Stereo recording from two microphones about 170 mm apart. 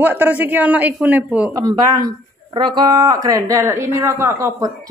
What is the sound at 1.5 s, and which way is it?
Speech, 20° right (ahead or behind).